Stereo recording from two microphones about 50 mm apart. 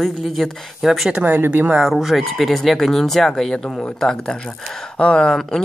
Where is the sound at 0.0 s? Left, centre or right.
Centre.